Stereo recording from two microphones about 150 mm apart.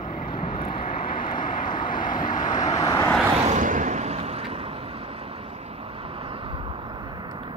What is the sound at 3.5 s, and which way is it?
Vehicle, 60° right (ahead or behind).